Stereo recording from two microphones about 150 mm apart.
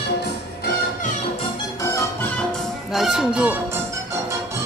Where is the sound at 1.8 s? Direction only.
20° left (ahead or behind).